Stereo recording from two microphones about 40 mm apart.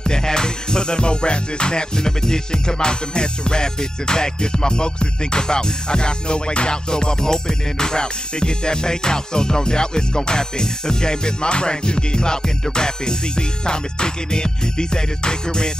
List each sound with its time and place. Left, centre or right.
0.0 s music: centre